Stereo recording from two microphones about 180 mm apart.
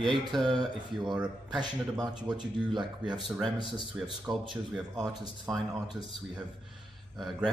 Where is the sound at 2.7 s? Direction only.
25° right (ahead or behind).